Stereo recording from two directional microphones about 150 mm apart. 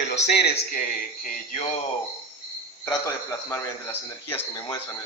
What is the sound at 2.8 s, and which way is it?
Speech, 20° left (ahead or behind).